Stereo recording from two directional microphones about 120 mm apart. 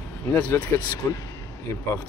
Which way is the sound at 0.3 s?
15° left (ahead or behind).